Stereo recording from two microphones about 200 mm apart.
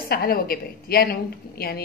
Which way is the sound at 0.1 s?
50° left (ahead or behind).